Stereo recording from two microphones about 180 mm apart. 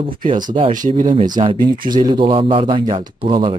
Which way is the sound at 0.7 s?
45° right (ahead or behind).